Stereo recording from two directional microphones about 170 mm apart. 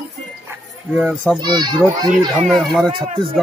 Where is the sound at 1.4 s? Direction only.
25° right (ahead or behind).